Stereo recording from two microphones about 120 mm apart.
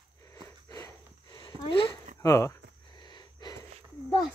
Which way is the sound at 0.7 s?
35° left (ahead or behind).